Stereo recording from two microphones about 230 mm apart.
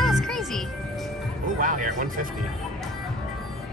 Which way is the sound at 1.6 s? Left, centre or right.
Right.